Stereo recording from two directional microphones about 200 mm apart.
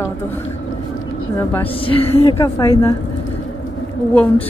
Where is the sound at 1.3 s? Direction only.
10° left (ahead or behind).